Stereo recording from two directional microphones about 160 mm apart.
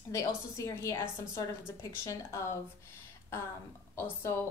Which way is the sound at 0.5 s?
20° left (ahead or behind).